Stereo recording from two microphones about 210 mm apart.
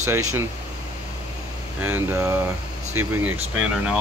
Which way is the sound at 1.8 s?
10° right (ahead or behind).